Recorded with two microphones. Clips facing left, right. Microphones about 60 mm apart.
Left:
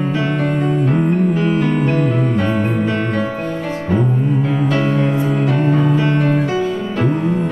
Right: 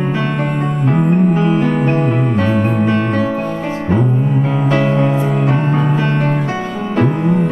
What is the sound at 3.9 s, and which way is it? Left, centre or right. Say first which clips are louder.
Music: right 1 dB; centre.